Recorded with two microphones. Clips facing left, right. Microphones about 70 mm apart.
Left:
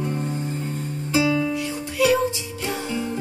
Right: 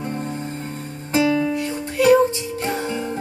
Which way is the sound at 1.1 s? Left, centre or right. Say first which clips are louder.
Right 2 dB; right.